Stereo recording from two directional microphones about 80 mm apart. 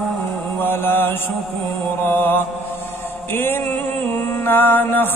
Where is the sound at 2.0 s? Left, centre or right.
Left.